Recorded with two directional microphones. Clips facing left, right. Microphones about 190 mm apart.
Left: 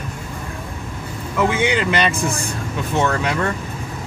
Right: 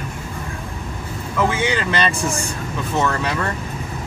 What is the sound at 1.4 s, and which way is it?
Speech, 15° left (ahead or behind).